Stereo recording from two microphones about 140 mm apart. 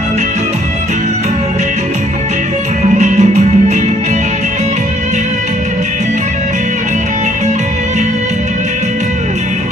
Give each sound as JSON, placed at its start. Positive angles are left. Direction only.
{"t": 2.8, "sound": "music", "side_deg": -55}